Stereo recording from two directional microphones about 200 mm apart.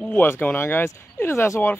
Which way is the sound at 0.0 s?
10° left (ahead or behind).